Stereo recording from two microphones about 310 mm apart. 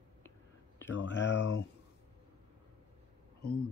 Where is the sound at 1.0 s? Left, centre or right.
Left.